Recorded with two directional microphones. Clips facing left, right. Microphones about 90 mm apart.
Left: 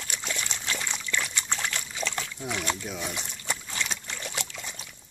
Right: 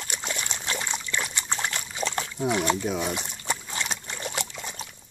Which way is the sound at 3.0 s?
20° right (ahead or behind).